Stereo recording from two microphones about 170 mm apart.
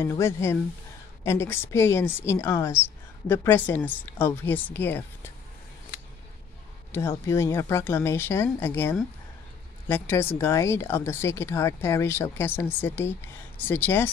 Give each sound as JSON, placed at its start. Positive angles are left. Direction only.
{"t": 0.0, "sound": "a woman's voice", "side_deg": 15}
{"t": 6.9, "sound": "a woman's voice", "side_deg": 15}